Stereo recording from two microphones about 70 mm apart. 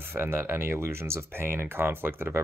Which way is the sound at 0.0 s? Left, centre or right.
Right.